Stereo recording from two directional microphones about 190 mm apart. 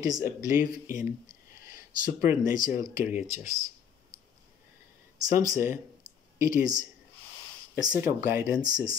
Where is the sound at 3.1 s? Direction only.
15° right (ahead or behind).